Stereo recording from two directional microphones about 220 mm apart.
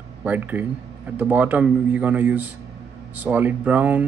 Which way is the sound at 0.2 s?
5° right (ahead or behind).